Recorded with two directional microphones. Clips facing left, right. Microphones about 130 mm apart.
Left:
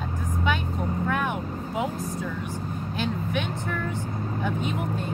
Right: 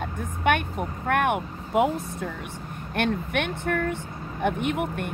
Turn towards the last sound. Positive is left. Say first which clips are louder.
# right 2 dB
turn(degrees=-65)  # may be behind; listen again after turning